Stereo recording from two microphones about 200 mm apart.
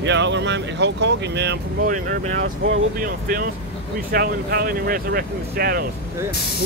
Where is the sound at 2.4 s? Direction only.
70° right (ahead or behind).